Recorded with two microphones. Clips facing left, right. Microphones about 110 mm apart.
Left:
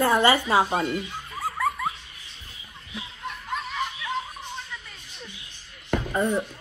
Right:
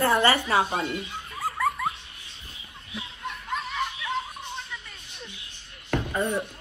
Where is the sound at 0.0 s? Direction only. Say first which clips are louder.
Left 2 dB; 20° left (ahead or behind).